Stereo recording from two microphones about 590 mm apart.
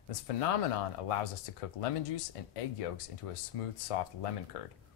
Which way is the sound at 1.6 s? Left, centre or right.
Left.